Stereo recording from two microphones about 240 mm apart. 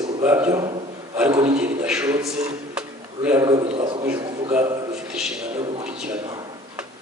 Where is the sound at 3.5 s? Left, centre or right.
Right.